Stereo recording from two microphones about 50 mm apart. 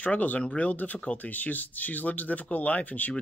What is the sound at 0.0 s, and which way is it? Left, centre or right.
Speech, left.